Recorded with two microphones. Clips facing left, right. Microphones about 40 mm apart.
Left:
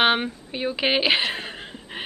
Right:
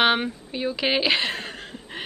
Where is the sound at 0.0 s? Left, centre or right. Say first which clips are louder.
Even; centre.